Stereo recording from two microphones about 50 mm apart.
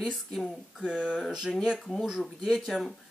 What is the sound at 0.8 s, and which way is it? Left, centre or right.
Speech, centre.